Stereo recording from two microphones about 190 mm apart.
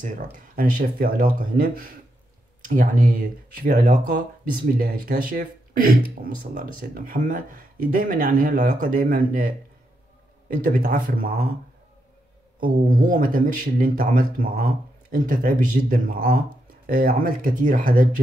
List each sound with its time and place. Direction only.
0.0 s speech: 45° right (ahead or behind)
10.5 s speech: 45° right (ahead or behind)
12.6 s speech: 45° right (ahead or behind)